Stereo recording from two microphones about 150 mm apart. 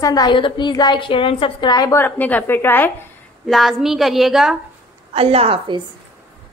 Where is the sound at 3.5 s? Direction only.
Centre (ahead or behind).